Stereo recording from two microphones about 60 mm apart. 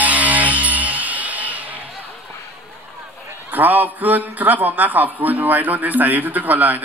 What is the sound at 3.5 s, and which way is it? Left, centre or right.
A man's voice, right.